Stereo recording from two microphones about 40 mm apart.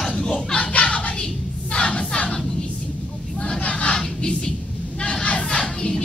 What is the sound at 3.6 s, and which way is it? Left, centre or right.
Battle cry, left.